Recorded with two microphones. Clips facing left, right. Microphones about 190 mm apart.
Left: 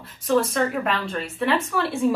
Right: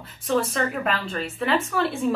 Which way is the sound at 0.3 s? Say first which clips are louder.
Left 3 dB; centre (ahead or behind).